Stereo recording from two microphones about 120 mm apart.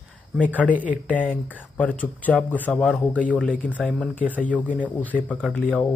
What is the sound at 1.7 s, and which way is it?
Speech, 10° left (ahead or behind).